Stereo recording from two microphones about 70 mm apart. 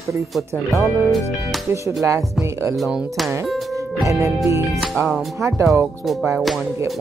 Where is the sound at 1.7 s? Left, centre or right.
Right.